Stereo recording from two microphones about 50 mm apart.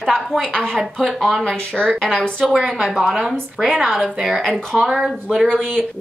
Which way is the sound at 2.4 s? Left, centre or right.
Centre.